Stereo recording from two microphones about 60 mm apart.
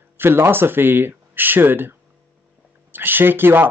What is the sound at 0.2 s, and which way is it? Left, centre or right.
Speech, right.